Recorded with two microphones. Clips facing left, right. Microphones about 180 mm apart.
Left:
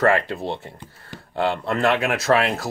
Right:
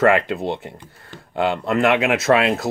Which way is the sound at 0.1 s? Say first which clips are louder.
Right 3 dB; 20° right (ahead or behind).